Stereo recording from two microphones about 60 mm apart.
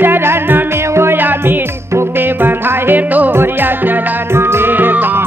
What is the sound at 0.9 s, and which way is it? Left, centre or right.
Music, right.